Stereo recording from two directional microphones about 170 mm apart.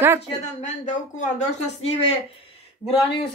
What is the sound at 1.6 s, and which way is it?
Speech, 40° left (ahead or behind).